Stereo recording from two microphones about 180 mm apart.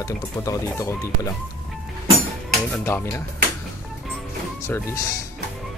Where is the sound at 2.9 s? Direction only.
15° left (ahead or behind).